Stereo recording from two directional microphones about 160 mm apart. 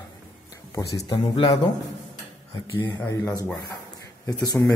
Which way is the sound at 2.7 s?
20° left (ahead or behind).